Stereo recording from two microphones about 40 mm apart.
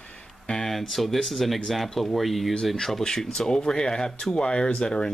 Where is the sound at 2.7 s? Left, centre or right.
Centre.